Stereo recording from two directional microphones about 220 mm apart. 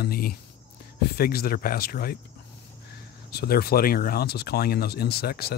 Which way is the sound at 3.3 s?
45° left (ahead or behind).